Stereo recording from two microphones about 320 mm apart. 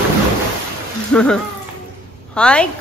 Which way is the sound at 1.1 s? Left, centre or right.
Centre.